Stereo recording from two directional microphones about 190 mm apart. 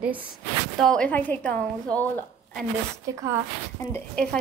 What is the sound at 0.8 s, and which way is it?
A woman's voice, 5° left (ahead or behind).